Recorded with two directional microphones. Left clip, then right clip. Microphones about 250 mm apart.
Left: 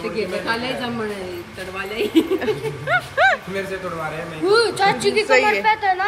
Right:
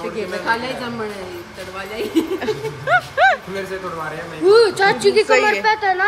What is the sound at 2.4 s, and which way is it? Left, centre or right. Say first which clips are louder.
Speech: even; centre.